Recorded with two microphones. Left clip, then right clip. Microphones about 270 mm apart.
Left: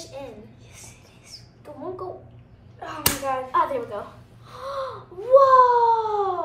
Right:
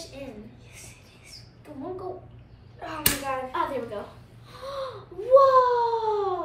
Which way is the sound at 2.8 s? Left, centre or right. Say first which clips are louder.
Left 2 dB; centre.